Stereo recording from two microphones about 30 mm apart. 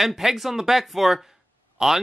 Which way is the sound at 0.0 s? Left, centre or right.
Centre.